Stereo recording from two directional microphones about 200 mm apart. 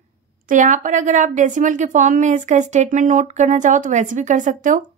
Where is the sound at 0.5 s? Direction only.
40° right (ahead or behind).